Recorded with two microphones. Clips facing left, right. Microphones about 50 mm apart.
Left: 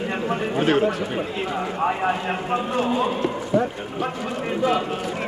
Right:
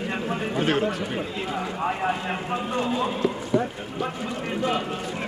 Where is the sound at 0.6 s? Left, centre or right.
Centre.